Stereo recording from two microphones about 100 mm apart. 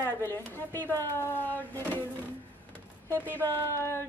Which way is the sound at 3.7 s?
25° left (ahead or behind).